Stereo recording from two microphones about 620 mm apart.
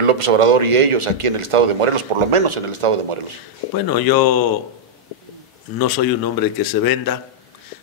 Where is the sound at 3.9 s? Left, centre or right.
Left.